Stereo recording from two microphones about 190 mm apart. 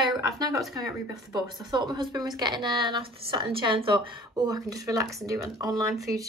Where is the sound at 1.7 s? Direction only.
25° right (ahead or behind).